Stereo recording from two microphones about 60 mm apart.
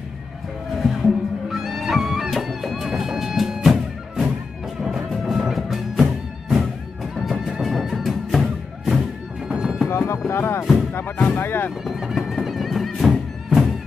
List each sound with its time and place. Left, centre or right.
0.8 s music: centre
7.2 s neigh: centre
8.0 s music: centre
9.5 s music: centre
9.8 s music: left
11.2 s speech: left
11.8 s music: centre